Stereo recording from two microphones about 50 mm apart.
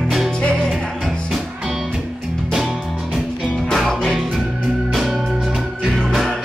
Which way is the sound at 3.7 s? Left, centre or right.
Centre.